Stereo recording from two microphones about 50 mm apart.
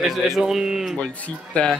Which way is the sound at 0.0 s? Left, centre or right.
Centre.